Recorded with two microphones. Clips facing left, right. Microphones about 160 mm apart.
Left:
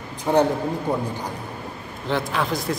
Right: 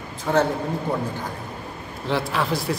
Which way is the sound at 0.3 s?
15° left (ahead or behind).